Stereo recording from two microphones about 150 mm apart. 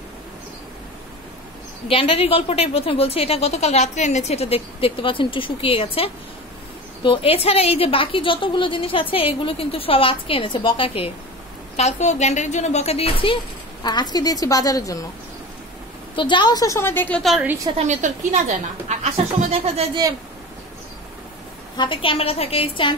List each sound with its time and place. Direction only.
1.9 s a woman's voice: 40° left (ahead or behind)
11.7 s a woman's voice: 50° left (ahead or behind); by 15.0 s 25° left (ahead or behind)
16.2 s a woman's voice: 30° left (ahead or behind); by 17.2 s 10° left (ahead or behind)
17.2 s a woman's voice: centre (ahead or behind)
17.7 s a woman's voice: 50° right (ahead or behind)
21.7 s a woman's voice: 35° left (ahead or behind)